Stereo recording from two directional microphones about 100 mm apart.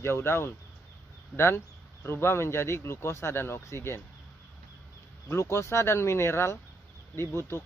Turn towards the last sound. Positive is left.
turn(degrees=25)  # may be behind; listen again after turning